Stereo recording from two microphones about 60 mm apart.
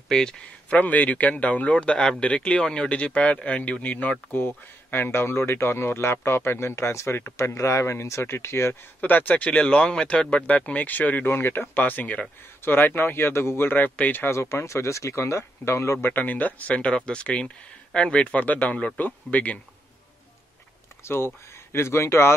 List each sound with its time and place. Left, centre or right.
0.1 s speech: centre
0.7 s speech: left
4.4 s speech: left
9.0 s speech: left
11.3 s speech: left
14.2 s speech: left
16.0 s speech: left
21.0 s speech: left